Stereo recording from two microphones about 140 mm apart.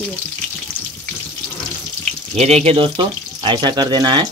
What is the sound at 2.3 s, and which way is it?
Speech, 50° right (ahead or behind).